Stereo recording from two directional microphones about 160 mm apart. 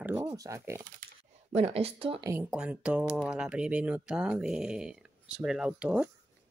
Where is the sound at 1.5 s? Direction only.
40° right (ahead or behind).